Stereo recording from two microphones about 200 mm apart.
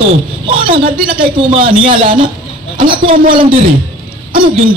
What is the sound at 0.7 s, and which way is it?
A man's voice, 25° right (ahead or behind).